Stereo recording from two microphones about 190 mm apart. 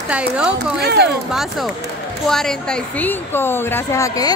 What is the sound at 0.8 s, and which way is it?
Speech, 60° right (ahead or behind).